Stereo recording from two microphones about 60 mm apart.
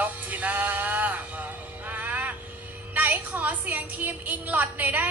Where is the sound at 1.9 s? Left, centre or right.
Right.